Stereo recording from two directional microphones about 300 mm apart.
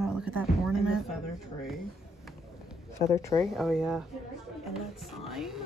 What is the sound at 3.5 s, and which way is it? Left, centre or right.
A woman's voice, centre.